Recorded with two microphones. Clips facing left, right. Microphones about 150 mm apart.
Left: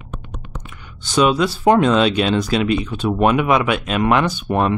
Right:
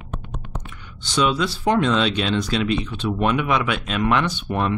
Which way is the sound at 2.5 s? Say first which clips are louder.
Left 4 dB; 5° left (ahead or behind).